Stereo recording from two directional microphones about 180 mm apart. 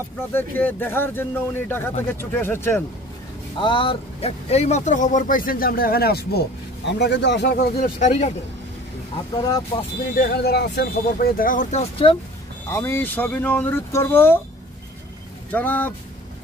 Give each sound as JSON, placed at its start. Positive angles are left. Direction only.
{"t": 0.3, "sound": "speech", "side_deg": 10}
{"t": 3.5, "sound": "speech", "side_deg": 30}
{"t": 9.4, "sound": "speech", "side_deg": 20}
{"t": 10.1, "sound": "speech", "side_deg": 60}
{"t": 12.6, "sound": "speech", "side_deg": 15}
{"t": 15.5, "sound": "speech", "side_deg": 10}